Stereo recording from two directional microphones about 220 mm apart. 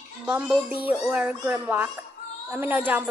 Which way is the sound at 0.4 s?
5° right (ahead or behind).